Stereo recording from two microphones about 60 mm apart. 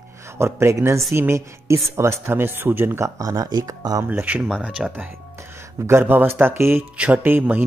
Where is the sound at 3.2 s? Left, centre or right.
Right.